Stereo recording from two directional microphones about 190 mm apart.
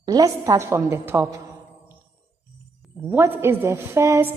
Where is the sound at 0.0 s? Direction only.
20° right (ahead or behind).